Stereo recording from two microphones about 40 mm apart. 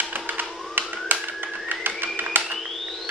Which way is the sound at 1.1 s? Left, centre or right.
Right.